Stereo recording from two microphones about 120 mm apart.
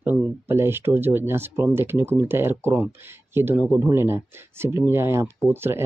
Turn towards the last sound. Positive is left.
turn(degrees=-20)  # may be behind; listen again after turning